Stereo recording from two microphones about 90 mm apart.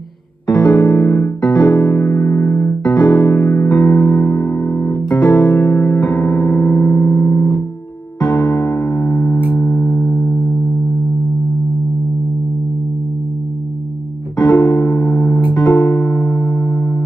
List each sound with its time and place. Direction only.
0.7 s music: 25° left (ahead or behind)
1.4 s music: 50° left (ahead or behind)
1.7 s music: 20° left (ahead or behind)
2.0 s electric piano: 30° left (ahead or behind)
2.8 s music: 50° left (ahead or behind)
3.1 s music: 20° left (ahead or behind)
3.6 s music: 45° left (ahead or behind); by 5.4 s 15° left (ahead or behind)
5.4 s music: 30° left (ahead or behind)
8.2 s electric piano: 50° left (ahead or behind)
8.6 s music: 30° left (ahead or behind)
14.5 s music: 20° left (ahead or behind)
14.9 s music: 35° left (ahead or behind)
15.7 s music: 20° left (ahead or behind)